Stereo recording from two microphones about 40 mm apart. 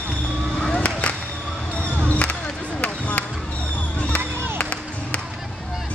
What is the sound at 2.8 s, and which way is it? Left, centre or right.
Basketball bounce, left.